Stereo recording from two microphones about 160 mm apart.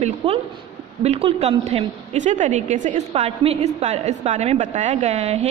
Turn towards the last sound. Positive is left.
turn(degrees=-40)  # may be behind; listen again after turning